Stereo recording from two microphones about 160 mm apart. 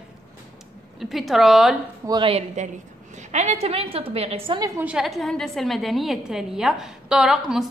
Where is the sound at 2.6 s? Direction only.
45° right (ahead or behind).